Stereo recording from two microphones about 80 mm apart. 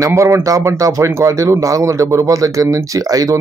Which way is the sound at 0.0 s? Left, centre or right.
Right.